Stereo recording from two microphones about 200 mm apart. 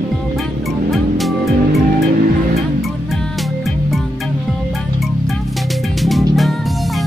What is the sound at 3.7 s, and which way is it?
Music, centre (ahead or behind).